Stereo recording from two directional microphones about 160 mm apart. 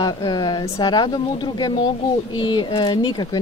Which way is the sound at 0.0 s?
30° left (ahead or behind).